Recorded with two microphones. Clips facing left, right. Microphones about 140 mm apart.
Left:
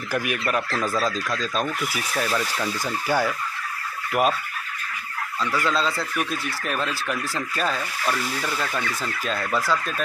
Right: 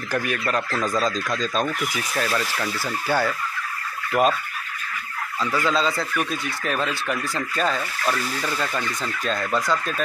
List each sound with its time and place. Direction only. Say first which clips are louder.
0.1 s speech: even; 10° left (ahead or behind)
5.4 s speech: right 2 dB; centre (ahead or behind)